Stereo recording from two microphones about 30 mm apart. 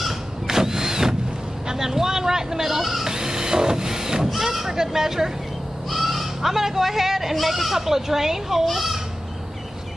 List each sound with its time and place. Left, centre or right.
0.5 s a sound: centre
3.1 s printer: centre
4.3 s sheep: centre
5.9 s speech: centre